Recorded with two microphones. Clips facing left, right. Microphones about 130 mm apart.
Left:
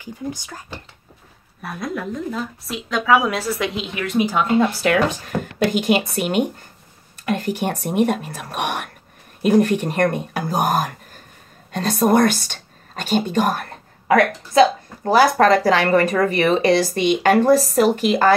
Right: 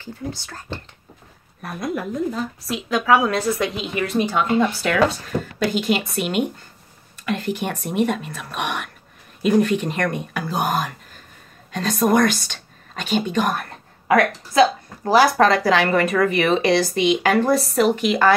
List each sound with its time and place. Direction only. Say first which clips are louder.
0.0 s speech: left 2 dB; 15° left (ahead or behind)
1.6 s a woman's voice: right 1 dB; centre (ahead or behind)
5.4 s speech: left 3 dB; 50° left (ahead or behind)
10.0 s a woman's voice: left 4 dB; 40° left (ahead or behind)
17.4 s speech: left 3 dB; 35° left (ahead or behind)